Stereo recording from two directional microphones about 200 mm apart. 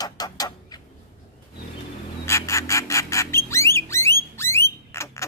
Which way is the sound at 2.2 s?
15° left (ahead or behind).